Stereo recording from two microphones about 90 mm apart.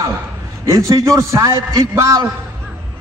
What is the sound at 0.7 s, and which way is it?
A man's voice, 35° right (ahead or behind).